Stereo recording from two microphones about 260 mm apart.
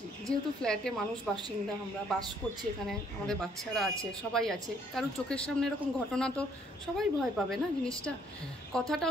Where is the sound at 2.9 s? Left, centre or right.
Centre.